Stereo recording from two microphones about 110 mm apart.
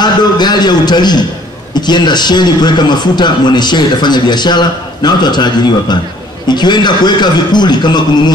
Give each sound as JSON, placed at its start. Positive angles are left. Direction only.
{"t": 0.0, "sound": "a man's voice", "side_deg": 40}